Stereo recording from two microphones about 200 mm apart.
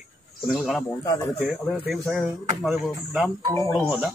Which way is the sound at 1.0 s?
15° left (ahead or behind).